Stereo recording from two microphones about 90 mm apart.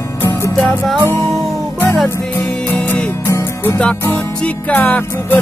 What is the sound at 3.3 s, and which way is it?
Music, 35° left (ahead or behind).